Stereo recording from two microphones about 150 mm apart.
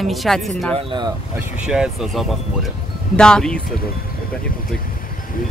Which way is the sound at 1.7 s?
5° right (ahead or behind).